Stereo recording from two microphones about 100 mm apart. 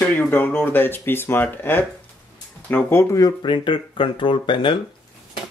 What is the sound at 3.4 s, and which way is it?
Speech, 55° left (ahead or behind).